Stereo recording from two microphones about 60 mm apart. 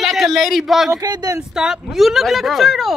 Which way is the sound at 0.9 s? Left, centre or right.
Right.